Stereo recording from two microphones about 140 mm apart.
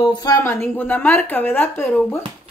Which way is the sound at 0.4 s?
15° left (ahead or behind).